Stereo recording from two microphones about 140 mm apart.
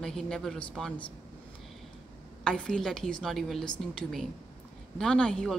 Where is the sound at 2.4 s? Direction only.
5° left (ahead or behind).